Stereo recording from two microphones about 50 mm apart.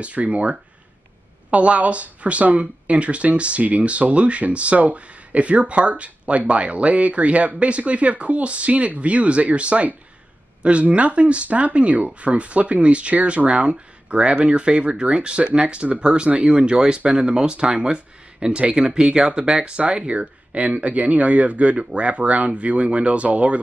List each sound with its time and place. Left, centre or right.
0.0 s speech: right